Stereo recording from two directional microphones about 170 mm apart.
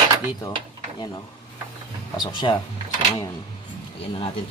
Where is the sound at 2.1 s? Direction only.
25° left (ahead or behind).